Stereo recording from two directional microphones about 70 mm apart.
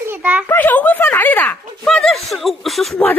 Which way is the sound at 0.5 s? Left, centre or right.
Left.